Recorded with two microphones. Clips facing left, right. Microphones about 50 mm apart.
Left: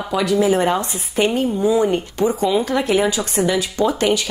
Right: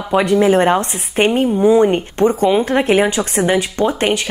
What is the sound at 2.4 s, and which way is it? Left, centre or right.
Speech, right.